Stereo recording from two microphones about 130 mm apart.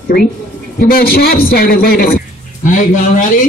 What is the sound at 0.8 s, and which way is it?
A man's voice, 90° left.